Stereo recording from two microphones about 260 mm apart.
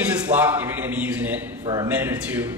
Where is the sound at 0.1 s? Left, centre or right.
Centre.